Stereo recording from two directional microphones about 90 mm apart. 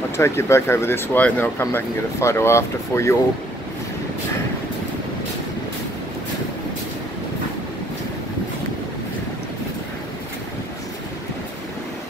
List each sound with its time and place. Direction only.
0.2 s speech: 30° left (ahead or behind)